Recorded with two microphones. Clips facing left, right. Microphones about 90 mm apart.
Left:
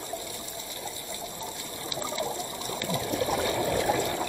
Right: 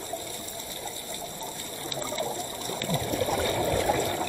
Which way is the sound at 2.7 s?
10° left (ahead or behind).